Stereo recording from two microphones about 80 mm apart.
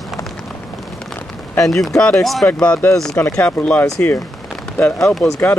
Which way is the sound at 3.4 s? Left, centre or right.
Centre.